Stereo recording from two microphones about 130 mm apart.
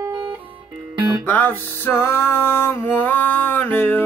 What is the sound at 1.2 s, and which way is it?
Music, 15° left (ahead or behind).